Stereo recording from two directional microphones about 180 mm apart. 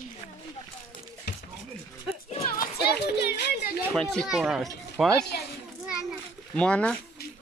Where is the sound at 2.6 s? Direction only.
60° left (ahead or behind).